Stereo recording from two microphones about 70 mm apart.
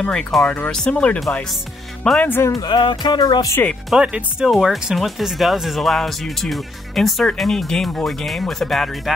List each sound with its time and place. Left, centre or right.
0.0 s speech: centre
2.1 s speech: left
2.5 s music: left
3.9 s speech: centre